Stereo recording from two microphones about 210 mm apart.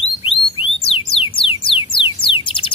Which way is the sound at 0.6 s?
25° left (ahead or behind).